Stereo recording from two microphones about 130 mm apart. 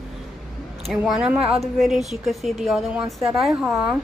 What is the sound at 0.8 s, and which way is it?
A woman's voice, centre (ahead or behind).